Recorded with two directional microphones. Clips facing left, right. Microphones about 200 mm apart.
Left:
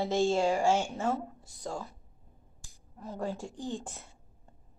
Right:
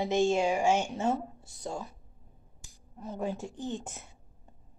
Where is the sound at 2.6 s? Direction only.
20° right (ahead or behind).